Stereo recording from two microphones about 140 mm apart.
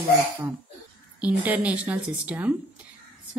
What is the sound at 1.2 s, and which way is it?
A woman's voice, 10° right (ahead or behind).